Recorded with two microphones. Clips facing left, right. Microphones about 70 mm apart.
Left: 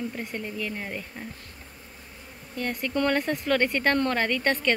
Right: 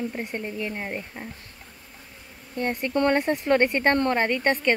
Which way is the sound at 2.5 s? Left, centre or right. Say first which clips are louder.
Right 3 dB; right.